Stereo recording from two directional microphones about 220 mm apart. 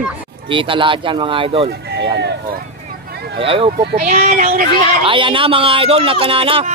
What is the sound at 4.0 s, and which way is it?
Speech, 35° right (ahead or behind).